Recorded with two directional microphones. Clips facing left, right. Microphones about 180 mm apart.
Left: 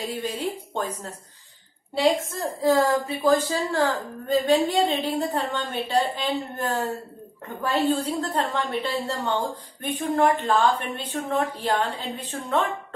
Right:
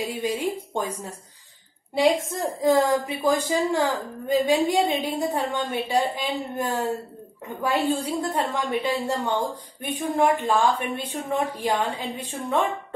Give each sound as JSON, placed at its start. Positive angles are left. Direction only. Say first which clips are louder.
{"t": 0.0, "sound": "a woman's voice", "louder": "right 2 dB", "side_deg": -10}
{"t": 2.6, "sound": "a woman's voice", "louder": "even", "side_deg": -15}